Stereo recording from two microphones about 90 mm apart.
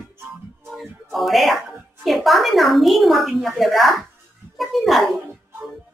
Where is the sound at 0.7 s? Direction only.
Centre (ahead or behind).